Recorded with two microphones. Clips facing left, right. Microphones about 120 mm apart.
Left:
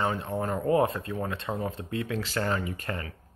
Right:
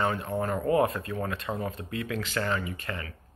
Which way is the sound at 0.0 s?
20° left (ahead or behind).